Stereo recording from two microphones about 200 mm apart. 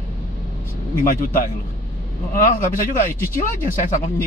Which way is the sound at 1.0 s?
45° left (ahead or behind).